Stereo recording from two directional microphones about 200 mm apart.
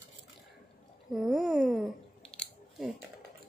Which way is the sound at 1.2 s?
Centre (ahead or behind).